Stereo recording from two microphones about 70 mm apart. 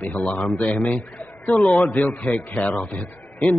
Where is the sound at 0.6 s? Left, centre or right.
Centre.